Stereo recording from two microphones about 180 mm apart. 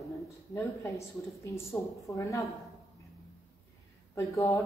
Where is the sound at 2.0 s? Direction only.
20° left (ahead or behind).